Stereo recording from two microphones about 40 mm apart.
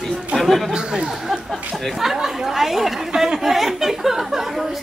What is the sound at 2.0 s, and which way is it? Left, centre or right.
Speech, centre.